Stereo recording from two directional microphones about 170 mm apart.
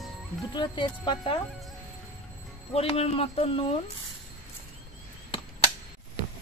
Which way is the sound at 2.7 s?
35° left (ahead or behind).